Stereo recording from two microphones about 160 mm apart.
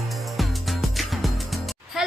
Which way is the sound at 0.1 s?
Centre (ahead or behind).